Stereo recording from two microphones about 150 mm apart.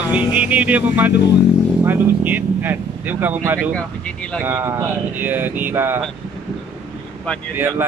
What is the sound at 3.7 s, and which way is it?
Speech, 5° left (ahead or behind).